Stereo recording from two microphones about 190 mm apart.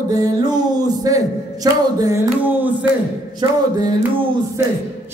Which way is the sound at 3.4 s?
25° right (ahead or behind).